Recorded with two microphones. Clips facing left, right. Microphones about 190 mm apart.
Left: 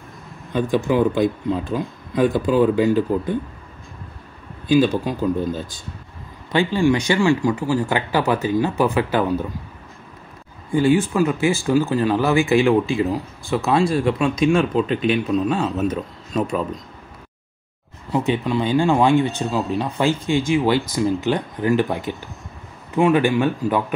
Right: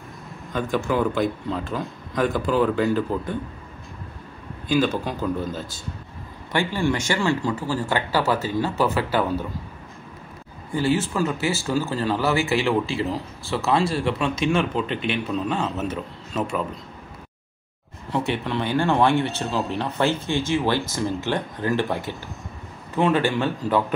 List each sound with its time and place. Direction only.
0.5 s speech: 15° left (ahead or behind)
4.6 s speech: 15° left (ahead or behind)
10.7 s speech: 15° left (ahead or behind)
18.1 s speech: 15° left (ahead or behind)